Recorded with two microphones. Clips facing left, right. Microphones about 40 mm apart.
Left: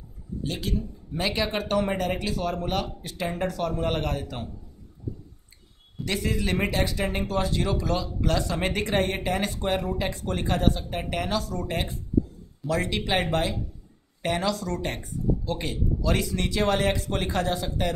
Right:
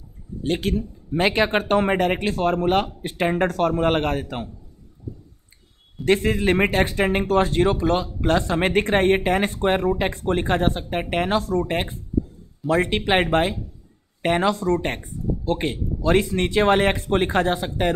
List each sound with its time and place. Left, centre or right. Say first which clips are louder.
0.4 s a man's voice: right 7 dB; right
6.0 s speech: right 9 dB; right